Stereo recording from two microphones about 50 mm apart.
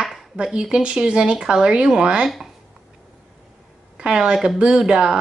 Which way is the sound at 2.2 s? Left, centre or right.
Centre.